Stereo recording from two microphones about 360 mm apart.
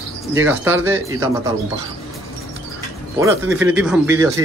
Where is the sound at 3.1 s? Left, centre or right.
Centre.